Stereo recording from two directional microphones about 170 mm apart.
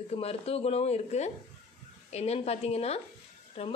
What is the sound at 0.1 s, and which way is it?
A woman's voice, 35° left (ahead or behind).